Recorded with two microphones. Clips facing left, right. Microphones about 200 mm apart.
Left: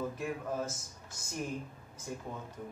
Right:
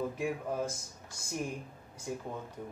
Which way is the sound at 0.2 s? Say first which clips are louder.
Right 2 dB; 10° right (ahead or behind).